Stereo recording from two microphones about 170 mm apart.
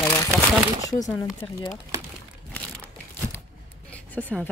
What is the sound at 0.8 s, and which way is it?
Speech, 20° left (ahead or behind).